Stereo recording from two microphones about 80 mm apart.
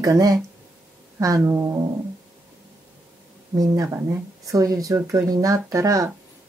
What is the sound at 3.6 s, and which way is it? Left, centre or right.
Speech, right.